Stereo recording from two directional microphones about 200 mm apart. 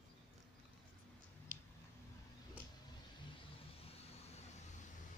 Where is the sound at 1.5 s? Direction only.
45° right (ahead or behind).